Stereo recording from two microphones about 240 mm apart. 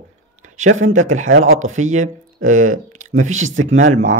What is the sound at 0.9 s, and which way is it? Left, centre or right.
Speech, right.